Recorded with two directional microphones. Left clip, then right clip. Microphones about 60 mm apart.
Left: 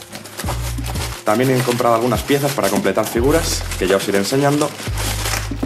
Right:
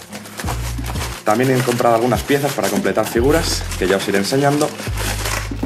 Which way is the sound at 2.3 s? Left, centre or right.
Left.